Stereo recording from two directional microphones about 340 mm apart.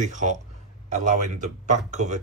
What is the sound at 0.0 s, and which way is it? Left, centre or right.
A man's voice, right.